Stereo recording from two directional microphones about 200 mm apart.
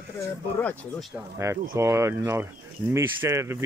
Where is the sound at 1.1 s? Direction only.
15° right (ahead or behind).